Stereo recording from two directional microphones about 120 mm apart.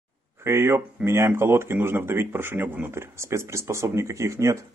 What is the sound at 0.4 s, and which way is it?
Speech, 20° right (ahead or behind).